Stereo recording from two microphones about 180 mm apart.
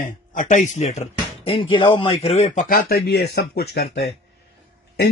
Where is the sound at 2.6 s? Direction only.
60° left (ahead or behind).